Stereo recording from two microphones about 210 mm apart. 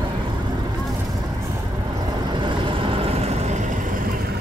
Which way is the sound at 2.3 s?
25° right (ahead or behind).